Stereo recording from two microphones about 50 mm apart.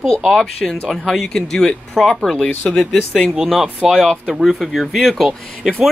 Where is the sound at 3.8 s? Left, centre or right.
Centre.